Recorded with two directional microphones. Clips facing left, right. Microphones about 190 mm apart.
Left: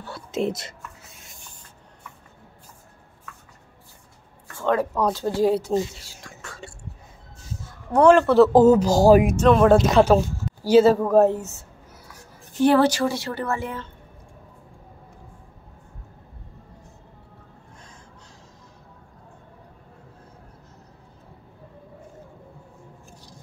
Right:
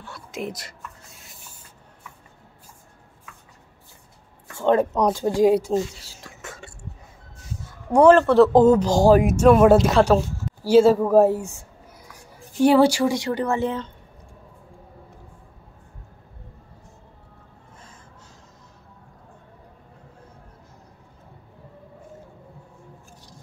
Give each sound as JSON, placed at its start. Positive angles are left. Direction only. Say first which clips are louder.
{"t": 0.0, "sound": "a sound", "louder": "left 6 dB", "side_deg": 30}
{"t": 1.1, "sound": "writing", "louder": "even", "side_deg": 0}
{"t": 4.6, "sound": "speech", "louder": "right 3 dB", "side_deg": -20}
{"t": 7.9, "sound": "speech", "louder": "right 1 dB", "side_deg": -5}